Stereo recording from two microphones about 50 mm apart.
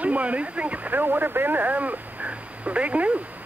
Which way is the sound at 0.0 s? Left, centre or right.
Right.